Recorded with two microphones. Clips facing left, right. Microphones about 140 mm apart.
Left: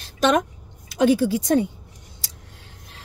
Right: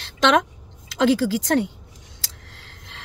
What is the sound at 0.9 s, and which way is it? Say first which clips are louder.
A woman's voice: left 1 dB; 90° right.